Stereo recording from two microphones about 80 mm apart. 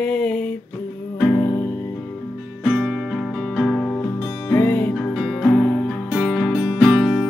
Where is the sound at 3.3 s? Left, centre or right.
Centre.